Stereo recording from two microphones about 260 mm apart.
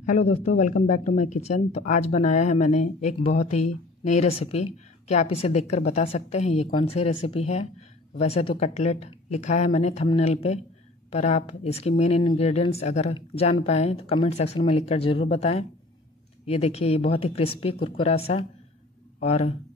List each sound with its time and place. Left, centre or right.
0.0 s speech: left